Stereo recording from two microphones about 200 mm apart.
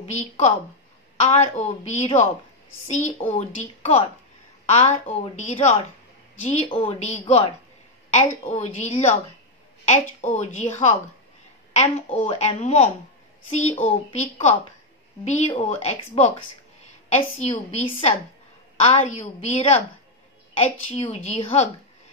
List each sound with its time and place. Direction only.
0.0 s a woman's voice: 35° left (ahead or behind)